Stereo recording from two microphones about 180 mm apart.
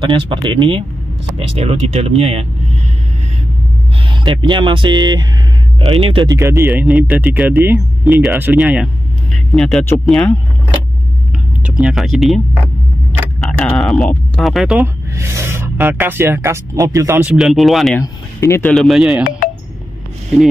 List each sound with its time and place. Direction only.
0.0 s speech: 30° right (ahead or behind)
4.0 s speech: 25° right (ahead or behind)
6.3 s speech: 15° right (ahead or behind)
6.7 s speech: 5° right (ahead or behind)
11.8 s speech: centre (ahead or behind)
13.4 s a sound: 5° left (ahead or behind)
15.1 s speech: 15° right (ahead or behind); by 18.0 s centre (ahead or behind)
18.0 s speech: 15° left (ahead or behind); by 19.2 s 5° right (ahead or behind)